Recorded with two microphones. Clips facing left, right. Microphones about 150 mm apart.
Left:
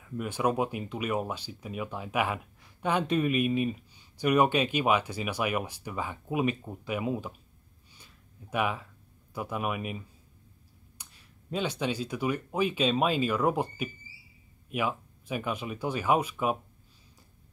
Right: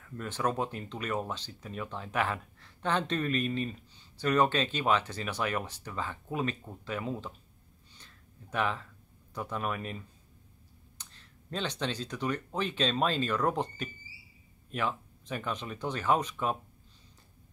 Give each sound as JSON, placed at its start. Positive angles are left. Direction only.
{"t": 0.0, "sound": "speech", "side_deg": 10}
{"t": 7.9, "sound": "a sound", "side_deg": 10}
{"t": 9.3, "sound": "speech", "side_deg": 10}